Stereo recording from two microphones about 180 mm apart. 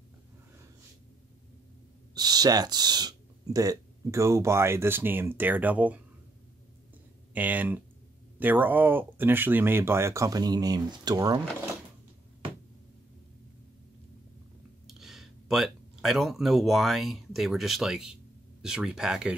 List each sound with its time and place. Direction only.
2.1 s speech: 20° right (ahead or behind)
7.3 s speech: 10° right (ahead or behind)
14.9 s speech: centre (ahead or behind)